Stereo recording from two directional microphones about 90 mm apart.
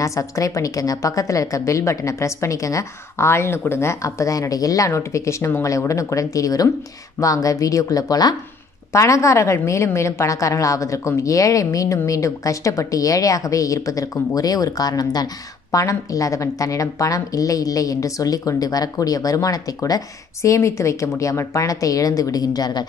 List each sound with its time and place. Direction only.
0.0 s a woman's voice: 35° left (ahead or behind)
8.9 s a woman's voice: 35° left (ahead or behind); by 22.8 s 50° left (ahead or behind)